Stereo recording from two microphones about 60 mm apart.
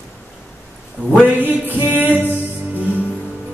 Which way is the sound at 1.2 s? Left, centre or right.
Right.